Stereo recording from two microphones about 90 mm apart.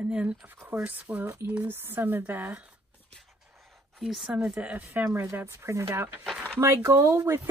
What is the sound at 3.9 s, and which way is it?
Speech, centre (ahead or behind).